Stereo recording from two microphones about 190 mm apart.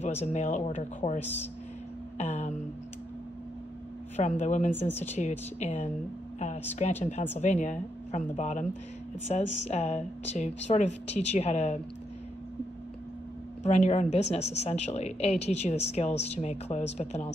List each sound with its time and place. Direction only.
0.0 s a woman's voice: 35° left (ahead or behind)
1.2 s speech: 10° left (ahead or behind)
2.1 s a woman's voice: 35° left (ahead or behind)
4.2 s a woman's voice: 40° left (ahead or behind)
4.7 s speech: 10° left (ahead or behind)
5.1 s a woman's voice: 35° left (ahead or behind)
13.6 s a woman's voice: 35° left (ahead or behind)